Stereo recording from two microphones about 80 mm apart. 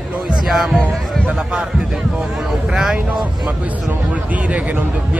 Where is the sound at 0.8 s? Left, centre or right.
Centre.